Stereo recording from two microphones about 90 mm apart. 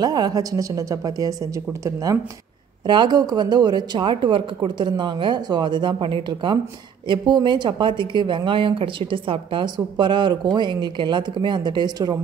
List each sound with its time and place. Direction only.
0.0 s a woman's voice: 45° right (ahead or behind)
2.9 s speech: 55° right (ahead or behind)